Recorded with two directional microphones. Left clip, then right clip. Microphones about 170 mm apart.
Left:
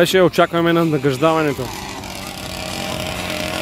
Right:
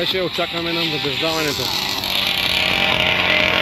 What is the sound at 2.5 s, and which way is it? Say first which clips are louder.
Vehicle: right 6 dB; centre (ahead or behind).